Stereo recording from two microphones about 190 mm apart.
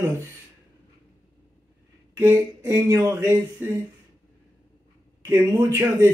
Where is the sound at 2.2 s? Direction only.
10° right (ahead or behind).